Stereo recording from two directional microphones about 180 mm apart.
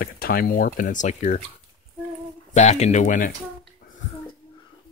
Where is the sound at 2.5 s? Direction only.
40° left (ahead or behind).